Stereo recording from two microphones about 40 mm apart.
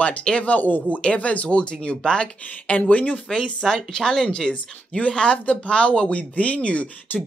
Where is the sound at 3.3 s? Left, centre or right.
Centre.